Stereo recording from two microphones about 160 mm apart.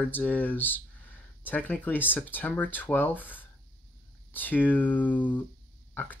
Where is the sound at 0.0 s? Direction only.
10° left (ahead or behind).